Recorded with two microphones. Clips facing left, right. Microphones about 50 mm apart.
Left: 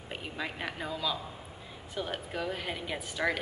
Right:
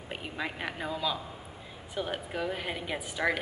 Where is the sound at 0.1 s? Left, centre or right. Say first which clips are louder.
Right 1 dB; centre.